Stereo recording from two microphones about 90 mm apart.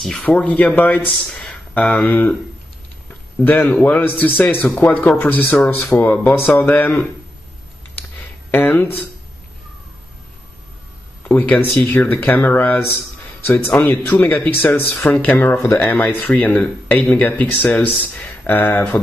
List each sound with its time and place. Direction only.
0.0 s speech: 5° left (ahead or behind)
0.3 s speech: 15° left (ahead or behind)
3.4 s speech: 20° left (ahead or behind)
8.5 s speech: 20° left (ahead or behind)
11.2 s speech: 20° left (ahead or behind)